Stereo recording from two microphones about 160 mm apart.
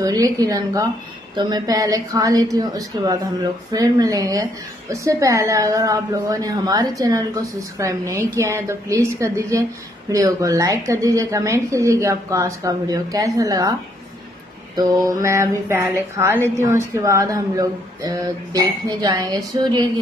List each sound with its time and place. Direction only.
0.0 s a woman's voice: 20° right (ahead or behind)
15.0 s a woman's voice: 20° right (ahead or behind)